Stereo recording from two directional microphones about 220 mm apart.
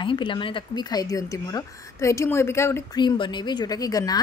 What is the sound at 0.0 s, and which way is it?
Speech, 20° left (ahead or behind).